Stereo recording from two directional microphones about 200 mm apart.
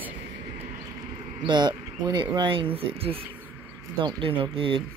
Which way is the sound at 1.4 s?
20° right (ahead or behind).